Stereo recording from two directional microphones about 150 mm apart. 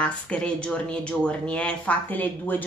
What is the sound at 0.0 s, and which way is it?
Speech, 5° left (ahead or behind).